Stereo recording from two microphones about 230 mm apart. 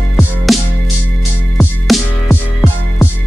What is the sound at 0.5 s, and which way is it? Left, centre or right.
Music, centre.